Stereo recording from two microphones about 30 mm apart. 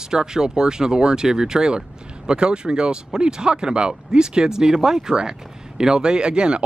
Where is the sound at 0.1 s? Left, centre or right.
Right.